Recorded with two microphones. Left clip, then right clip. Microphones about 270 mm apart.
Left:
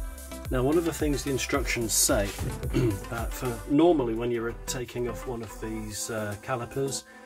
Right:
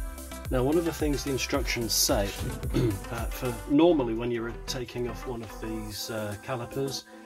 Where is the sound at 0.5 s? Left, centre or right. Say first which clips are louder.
Left 1 dB; centre.